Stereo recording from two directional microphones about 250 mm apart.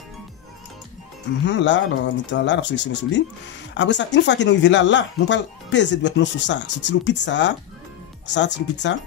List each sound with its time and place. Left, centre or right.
1.4 s speech: left